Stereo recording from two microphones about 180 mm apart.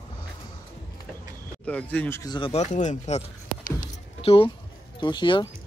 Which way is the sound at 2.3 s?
30° left (ahead or behind).